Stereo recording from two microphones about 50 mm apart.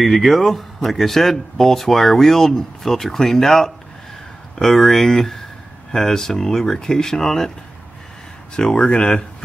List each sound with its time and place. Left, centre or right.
0.0 s speech: centre
8.5 s speech: centre